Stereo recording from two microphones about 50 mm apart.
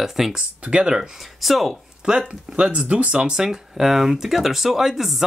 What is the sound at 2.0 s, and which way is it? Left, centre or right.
Speech, right.